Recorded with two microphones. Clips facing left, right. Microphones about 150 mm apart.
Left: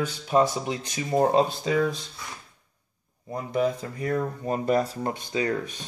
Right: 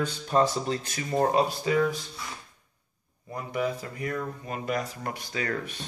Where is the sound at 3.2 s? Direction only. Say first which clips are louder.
Left 4 dB; 25° left (ahead or behind).